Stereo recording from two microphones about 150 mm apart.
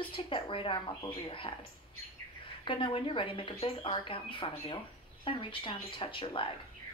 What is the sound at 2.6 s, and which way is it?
Speech, 35° left (ahead or behind).